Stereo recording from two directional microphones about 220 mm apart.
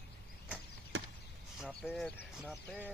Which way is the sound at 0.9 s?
60° right (ahead or behind).